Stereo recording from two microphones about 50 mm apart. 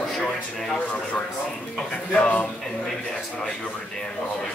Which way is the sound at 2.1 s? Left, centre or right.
Left.